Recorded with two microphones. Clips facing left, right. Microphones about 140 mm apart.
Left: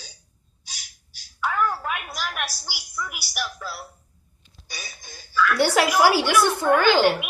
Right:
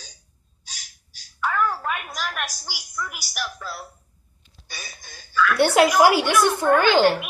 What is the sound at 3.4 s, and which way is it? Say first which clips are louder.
Speech: even; 5° left (ahead or behind).